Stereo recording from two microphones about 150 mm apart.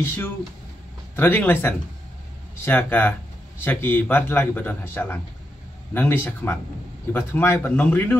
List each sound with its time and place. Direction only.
0.0 s speech: 15° left (ahead or behind)